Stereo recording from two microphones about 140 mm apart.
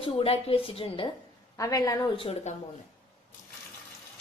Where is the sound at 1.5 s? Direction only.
25° left (ahead or behind).